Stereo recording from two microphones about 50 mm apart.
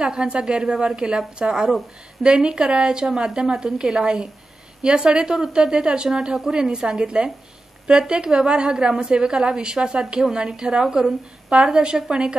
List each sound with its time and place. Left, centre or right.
0.0 s a woman's voice: centre